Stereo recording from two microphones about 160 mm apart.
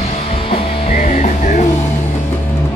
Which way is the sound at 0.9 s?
50° left (ahead or behind).